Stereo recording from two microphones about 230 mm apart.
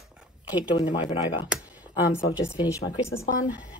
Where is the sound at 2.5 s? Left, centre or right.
Centre.